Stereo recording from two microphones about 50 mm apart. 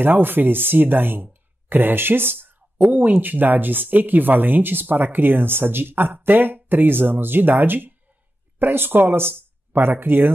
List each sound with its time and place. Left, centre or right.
0.0 s speech: right